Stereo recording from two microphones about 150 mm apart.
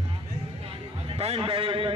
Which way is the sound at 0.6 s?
40° right (ahead or behind).